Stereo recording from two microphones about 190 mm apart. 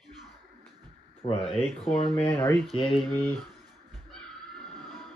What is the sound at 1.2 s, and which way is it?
Speech, 30° left (ahead or behind).